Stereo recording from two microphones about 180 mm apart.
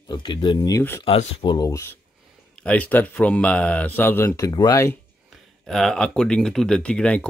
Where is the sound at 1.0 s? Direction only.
30° left (ahead or behind).